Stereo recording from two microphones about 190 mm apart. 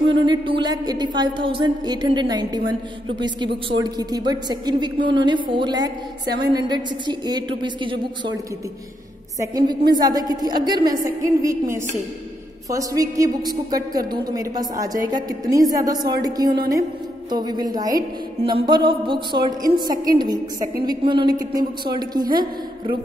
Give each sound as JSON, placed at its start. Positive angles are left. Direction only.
{"t": 0.1, "sound": "a woman's voice", "side_deg": -25}
{"t": 9.4, "sound": "a woman's voice", "side_deg": -20}